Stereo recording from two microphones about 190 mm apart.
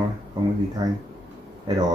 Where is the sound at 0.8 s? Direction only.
25° right (ahead or behind).